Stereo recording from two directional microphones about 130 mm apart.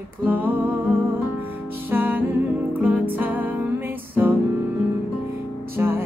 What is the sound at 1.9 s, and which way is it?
Music, 15° right (ahead or behind).